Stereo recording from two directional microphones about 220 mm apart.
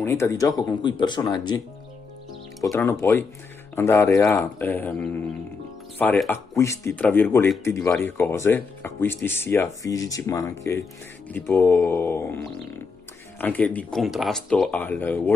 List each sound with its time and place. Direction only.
0.0 s speech: 10° left (ahead or behind)
2.6 s speech: 15° left (ahead or behind)